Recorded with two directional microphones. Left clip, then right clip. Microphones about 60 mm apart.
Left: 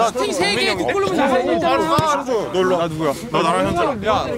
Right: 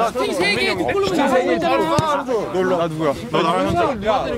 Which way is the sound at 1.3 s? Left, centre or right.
Right.